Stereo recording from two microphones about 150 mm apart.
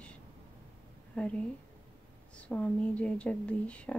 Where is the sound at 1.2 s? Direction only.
10° left (ahead or behind).